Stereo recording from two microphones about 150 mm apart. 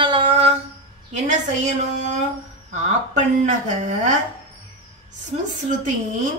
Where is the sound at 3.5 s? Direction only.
50° right (ahead or behind).